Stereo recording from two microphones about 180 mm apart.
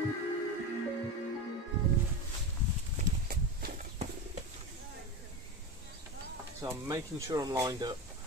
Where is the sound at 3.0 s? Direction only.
50° right (ahead or behind).